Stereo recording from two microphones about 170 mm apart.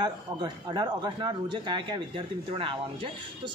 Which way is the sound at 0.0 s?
25° right (ahead or behind).